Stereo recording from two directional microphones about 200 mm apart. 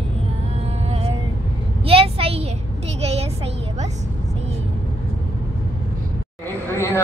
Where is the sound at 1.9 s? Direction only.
30° right (ahead or behind).